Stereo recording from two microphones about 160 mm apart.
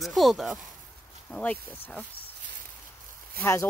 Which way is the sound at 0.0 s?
Centre (ahead or behind).